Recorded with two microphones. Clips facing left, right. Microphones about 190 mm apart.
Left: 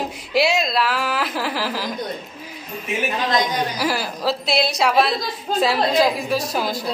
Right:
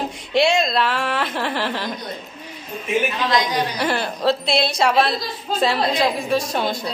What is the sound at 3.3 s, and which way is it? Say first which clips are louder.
Speech: left 2 dB; 45° left (ahead or behind).